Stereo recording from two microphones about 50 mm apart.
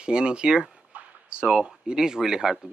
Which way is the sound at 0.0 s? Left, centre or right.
Centre.